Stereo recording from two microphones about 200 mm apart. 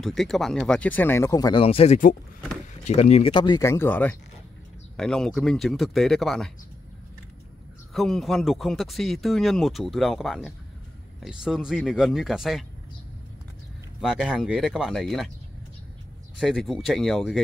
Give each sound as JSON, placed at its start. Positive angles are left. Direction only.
{"t": 0.0, "sound": "speech", "side_deg": 0}
{"t": 1.6, "sound": "speech", "side_deg": 30}
{"t": 7.9, "sound": "speech", "side_deg": 0}
{"t": 14.0, "sound": "speech", "side_deg": -5}
{"t": 16.3, "sound": "speech", "side_deg": 0}